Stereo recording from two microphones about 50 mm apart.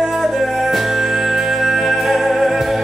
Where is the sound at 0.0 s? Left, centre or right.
Centre.